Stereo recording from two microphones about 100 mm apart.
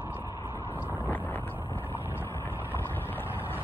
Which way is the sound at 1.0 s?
20° left (ahead or behind).